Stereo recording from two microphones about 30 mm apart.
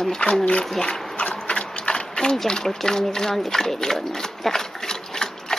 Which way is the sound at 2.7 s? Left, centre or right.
Centre.